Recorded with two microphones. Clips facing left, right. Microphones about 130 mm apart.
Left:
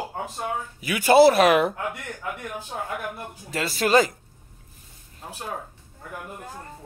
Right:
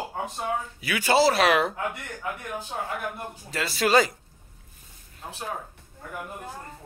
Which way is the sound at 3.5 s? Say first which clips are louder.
Left 2 dB; 45° left (ahead or behind).